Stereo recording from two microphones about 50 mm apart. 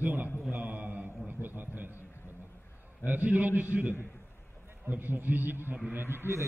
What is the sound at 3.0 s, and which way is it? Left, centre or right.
A man's voice, right.